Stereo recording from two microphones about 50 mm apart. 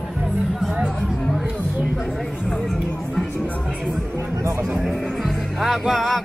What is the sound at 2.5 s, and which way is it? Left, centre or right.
Music, centre.